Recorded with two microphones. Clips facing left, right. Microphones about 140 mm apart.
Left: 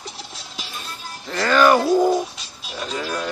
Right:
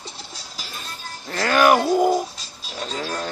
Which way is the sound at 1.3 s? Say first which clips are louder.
Left 1 dB; 10° right (ahead or behind).